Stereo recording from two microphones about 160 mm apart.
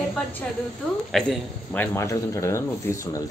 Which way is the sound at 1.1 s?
5° left (ahead or behind).